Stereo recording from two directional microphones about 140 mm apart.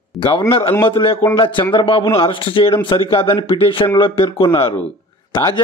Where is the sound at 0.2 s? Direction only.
35° left (ahead or behind).